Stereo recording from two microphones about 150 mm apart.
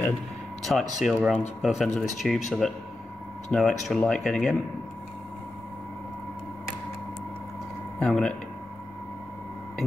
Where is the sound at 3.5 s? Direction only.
5° left (ahead or behind).